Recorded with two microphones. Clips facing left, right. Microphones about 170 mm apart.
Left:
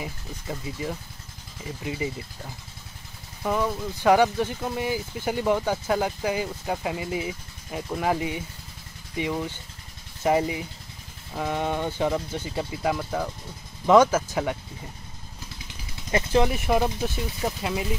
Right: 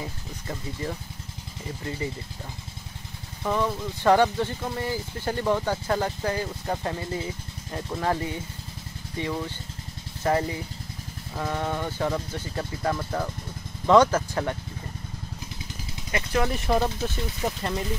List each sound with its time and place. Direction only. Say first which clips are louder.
0.0 s speech: left 1 dB; 10° left (ahead or behind)
3.4 s speech: even; 10° left (ahead or behind)
16.1 s speech: left 4 dB; 25° left (ahead or behind)
16.4 s speech: left 1 dB; 10° left (ahead or behind)